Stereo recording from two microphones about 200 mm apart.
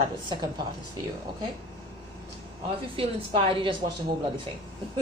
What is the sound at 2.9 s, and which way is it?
Speech, 30° right (ahead or behind).